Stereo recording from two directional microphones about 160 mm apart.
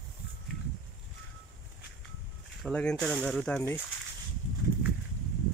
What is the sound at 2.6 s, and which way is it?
Speech, 5° left (ahead or behind).